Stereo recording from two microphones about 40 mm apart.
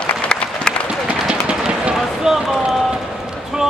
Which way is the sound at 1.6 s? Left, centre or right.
Right.